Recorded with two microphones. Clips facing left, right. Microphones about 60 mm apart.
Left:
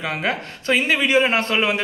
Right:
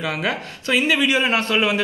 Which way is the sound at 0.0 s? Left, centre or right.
Left.